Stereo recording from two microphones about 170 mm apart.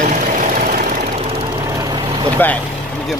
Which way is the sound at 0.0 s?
50° right (ahead or behind).